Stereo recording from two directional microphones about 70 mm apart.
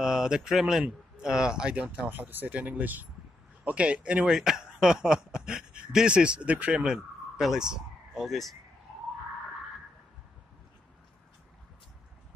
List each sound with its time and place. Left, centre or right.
0.0 s speech: centre
4.3 s speech: centre